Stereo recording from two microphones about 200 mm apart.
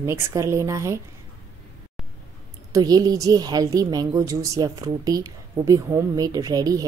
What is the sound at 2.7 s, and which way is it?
Speech, 20° right (ahead or behind).